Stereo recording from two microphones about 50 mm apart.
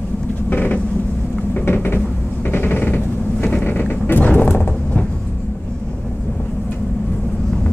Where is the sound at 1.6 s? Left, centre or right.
Left.